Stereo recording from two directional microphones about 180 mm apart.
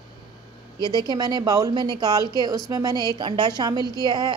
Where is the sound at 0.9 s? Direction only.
25° right (ahead or behind).